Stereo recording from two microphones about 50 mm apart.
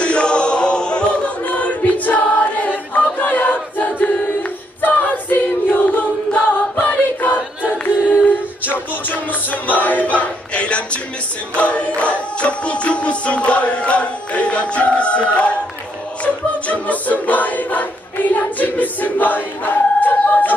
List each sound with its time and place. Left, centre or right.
0.0 s choir: centre
8.6 s music: left
16.3 s a capella: left